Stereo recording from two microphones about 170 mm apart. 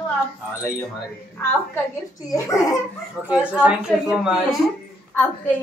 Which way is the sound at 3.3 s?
5° right (ahead or behind).